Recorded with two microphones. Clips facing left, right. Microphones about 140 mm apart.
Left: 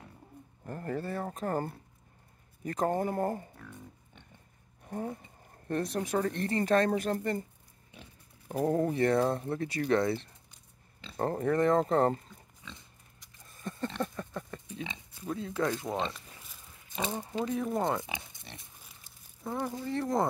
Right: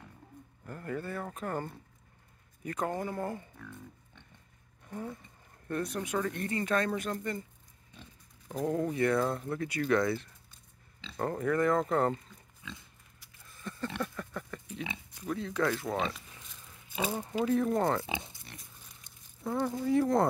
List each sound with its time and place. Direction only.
0.7 s speech: 35° left (ahead or behind)
4.8 s speech: 35° left (ahead or behind)
8.6 s speech: 35° left (ahead or behind)
13.4 s a sound: 40° left (ahead or behind)
14.0 s pig: 25° left (ahead or behind)
15.2 s speech: 25° left (ahead or behind)
16.9 s speech: 5° right (ahead or behind)
18.3 s pig: 25° left (ahead or behind)
19.0 s a sound: 5° left (ahead or behind)
19.8 s speech: 5° right (ahead or behind)